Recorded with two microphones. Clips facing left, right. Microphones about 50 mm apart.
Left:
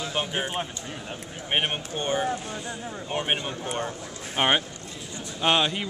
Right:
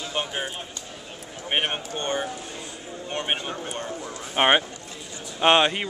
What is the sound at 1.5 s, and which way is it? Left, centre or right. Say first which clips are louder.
Speech: right 1 dB; centre.